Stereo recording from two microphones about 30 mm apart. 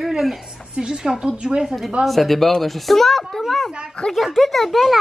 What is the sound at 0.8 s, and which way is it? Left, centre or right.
Speech, right.